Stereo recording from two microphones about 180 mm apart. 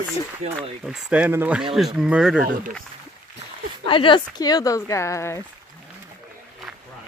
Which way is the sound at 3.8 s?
30° left (ahead or behind).